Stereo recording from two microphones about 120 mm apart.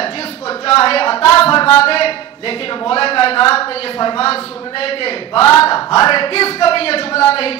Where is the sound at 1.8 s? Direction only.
55° left (ahead or behind).